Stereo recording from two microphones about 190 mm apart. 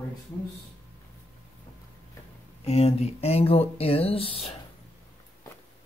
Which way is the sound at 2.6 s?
35° left (ahead or behind).